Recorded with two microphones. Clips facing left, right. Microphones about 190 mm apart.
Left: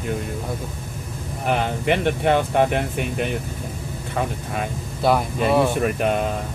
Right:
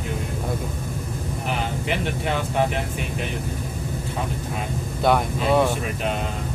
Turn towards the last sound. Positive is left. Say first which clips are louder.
# left 1 dB
turn(degrees=5)  # may be behind; listen again after turning